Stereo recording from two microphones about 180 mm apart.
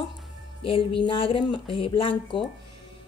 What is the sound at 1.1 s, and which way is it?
A woman's voice, 30° left (ahead or behind).